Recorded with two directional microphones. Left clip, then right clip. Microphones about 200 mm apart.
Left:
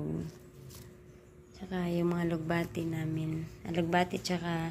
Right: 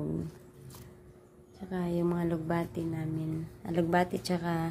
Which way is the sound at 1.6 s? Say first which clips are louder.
Right 1 dB; 10° right (ahead or behind).